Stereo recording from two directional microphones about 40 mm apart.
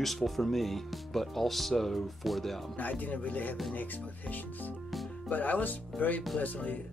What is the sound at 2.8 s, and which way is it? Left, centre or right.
Speech, left.